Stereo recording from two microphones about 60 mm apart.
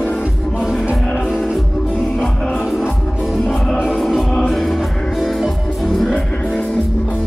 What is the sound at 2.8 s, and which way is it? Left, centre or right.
Music, centre.